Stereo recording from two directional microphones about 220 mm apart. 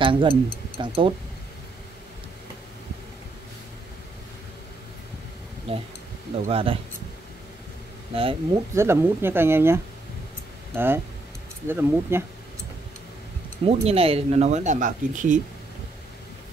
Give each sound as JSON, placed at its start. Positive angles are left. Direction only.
{"t": 0.0, "sound": "speech", "side_deg": -25}
{"t": 5.7, "sound": "speech", "side_deg": -25}
{"t": 8.1, "sound": "speech", "side_deg": -25}
{"t": 8.7, "sound": "speech", "side_deg": -10}
{"t": 11.6, "sound": "speech", "side_deg": -10}
{"t": 13.7, "sound": "speech", "side_deg": -25}